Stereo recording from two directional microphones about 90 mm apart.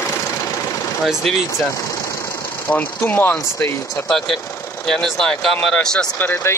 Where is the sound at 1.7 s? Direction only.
35° left (ahead or behind).